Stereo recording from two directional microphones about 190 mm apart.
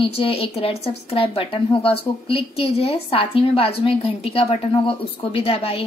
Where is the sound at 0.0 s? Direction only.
30° left (ahead or behind).